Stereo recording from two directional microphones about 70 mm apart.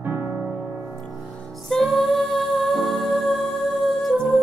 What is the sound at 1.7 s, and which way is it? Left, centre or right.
Music, centre.